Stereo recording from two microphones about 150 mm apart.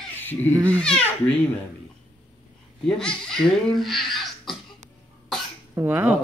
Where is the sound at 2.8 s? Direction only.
5° left (ahead or behind).